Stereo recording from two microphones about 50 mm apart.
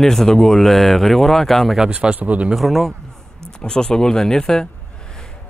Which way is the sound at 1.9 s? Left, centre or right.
Right.